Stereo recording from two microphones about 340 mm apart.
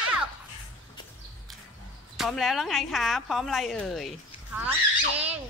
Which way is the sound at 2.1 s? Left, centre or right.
Centre.